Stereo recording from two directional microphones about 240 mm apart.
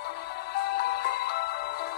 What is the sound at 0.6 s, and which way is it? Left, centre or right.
Music, left.